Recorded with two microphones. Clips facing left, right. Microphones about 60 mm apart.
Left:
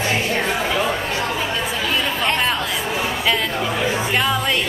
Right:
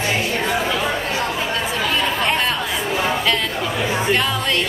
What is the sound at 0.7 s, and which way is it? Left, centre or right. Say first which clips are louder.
Chatter: even; centre.